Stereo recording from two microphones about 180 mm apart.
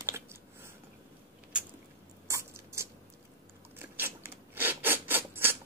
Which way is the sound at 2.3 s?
15° right (ahead or behind).